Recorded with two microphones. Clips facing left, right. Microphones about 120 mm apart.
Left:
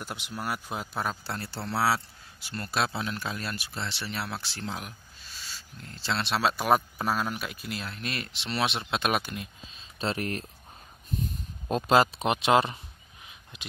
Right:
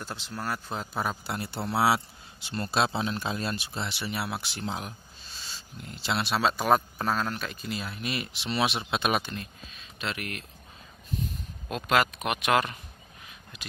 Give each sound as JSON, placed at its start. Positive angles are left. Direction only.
{"t": 0.0, "sound": "speech", "side_deg": 15}
{"t": 1.2, "sound": "a man's voice", "side_deg": -15}
{"t": 6.3, "sound": "speech", "side_deg": 0}
{"t": 9.7, "sound": "a sound", "side_deg": 30}
{"t": 11.7, "sound": "speech", "side_deg": 30}